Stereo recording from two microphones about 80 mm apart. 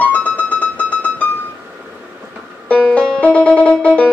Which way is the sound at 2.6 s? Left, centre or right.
Centre.